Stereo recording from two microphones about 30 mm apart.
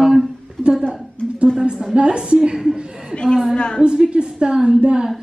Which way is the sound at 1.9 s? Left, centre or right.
Right.